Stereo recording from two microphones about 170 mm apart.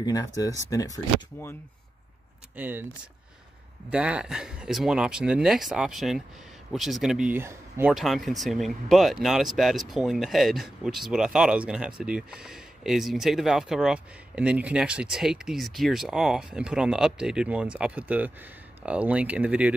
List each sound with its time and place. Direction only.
0.0 s speech: 20° left (ahead or behind)
2.5 s speech: 10° right (ahead or behind)
3.9 s speech: 5° right (ahead or behind)
7.9 s speech: centre (ahead or behind)